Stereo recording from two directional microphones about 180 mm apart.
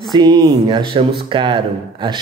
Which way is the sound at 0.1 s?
25° right (ahead or behind).